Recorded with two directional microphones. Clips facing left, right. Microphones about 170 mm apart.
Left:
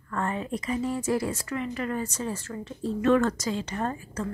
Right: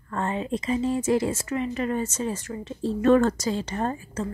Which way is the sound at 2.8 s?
35° right (ahead or behind).